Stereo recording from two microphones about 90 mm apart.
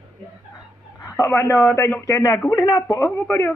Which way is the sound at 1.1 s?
30° left (ahead or behind).